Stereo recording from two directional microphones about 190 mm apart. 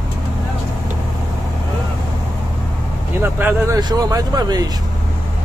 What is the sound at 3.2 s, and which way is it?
Speech, 10° right (ahead or behind).